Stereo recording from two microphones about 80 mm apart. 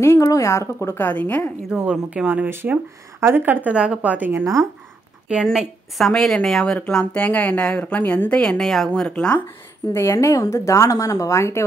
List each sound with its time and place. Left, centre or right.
0.0 s a woman's voice: left
0.9 s a woman's voice: left
1.7 s speech: centre
3.6 s a woman's voice: centre
5.3 s a woman's voice: centre
7.2 s a woman's voice: centre
9.9 s a woman's voice: left